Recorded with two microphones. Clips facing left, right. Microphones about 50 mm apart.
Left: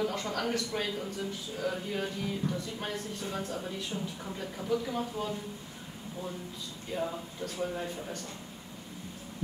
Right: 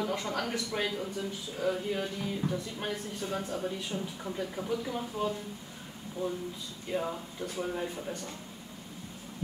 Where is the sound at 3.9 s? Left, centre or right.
Centre.